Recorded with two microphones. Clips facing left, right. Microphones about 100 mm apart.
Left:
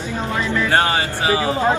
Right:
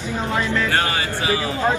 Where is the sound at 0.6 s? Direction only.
30° left (ahead or behind).